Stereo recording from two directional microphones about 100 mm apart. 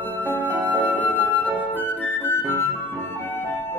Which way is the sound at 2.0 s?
20° left (ahead or behind).